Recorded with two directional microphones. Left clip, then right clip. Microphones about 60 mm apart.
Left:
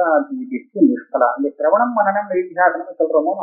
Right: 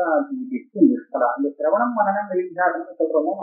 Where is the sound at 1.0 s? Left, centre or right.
Centre.